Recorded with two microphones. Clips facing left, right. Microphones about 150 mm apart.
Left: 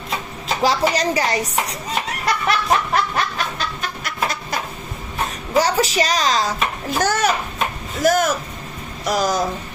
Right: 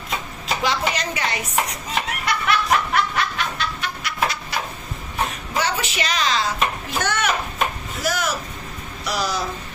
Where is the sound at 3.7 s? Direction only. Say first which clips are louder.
Even; 45° left (ahead or behind).